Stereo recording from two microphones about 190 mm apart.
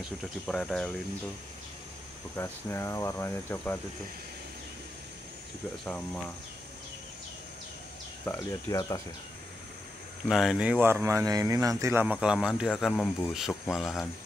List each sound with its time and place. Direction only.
0.2 s speech: centre (ahead or behind)
2.3 s speech: 15° left (ahead or behind)
5.9 s speech: 5° left (ahead or behind)
8.3 s speech: 15° left (ahead or behind)
10.2 s speech: centre (ahead or behind)